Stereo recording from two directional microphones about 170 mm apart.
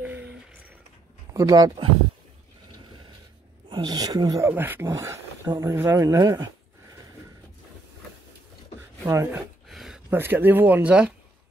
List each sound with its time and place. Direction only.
0.0 s a sound: 10° right (ahead or behind)
1.3 s speech: 20° right (ahead or behind)
3.6 s speech: 25° right (ahead or behind)
9.0 s speech: 15° right (ahead or behind)
9.7 s a sound: centre (ahead or behind)
10.0 s speech: 15° right (ahead or behind)